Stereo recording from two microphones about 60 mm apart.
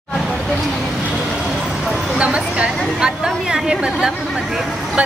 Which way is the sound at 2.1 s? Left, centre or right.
Centre.